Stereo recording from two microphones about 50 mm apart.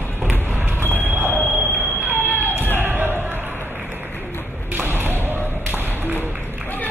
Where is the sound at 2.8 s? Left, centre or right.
Right.